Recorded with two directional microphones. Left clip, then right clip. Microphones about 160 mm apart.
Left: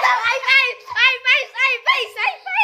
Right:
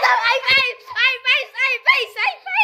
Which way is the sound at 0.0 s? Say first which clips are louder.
Right 1 dB; 25° right (ahead or behind).